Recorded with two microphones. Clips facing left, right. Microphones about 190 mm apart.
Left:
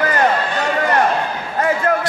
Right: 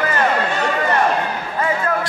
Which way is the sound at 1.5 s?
45° left (ahead or behind).